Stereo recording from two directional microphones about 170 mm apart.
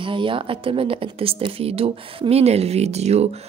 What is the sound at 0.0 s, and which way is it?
Speech, 30° right (ahead or behind).